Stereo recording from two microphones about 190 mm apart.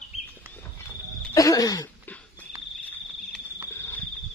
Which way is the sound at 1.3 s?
20° left (ahead or behind).